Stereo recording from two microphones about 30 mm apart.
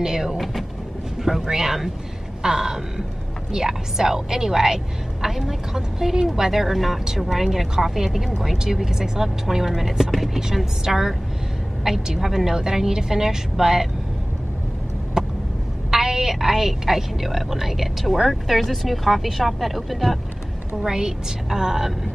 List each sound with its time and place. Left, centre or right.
0.0 s a woman's voice: centre
0.4 s a woman's voice: centre
2.4 s a sound: centre
3.5 s a woman's voice: centre
10.5 s a woman's voice: centre
15.2 s vehicle: right
16.0 s a woman's voice: centre
20.8 s a sound: right
21.5 s a woman's voice: centre